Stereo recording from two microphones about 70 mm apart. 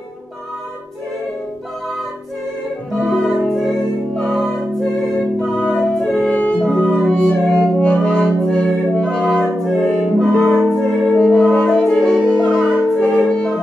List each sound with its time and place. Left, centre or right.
3.0 s music: centre
9.0 s music: centre
12.2 s music: centre
12.9 s music: centre